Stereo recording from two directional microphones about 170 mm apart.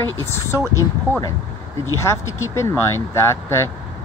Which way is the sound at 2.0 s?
15° left (ahead or behind).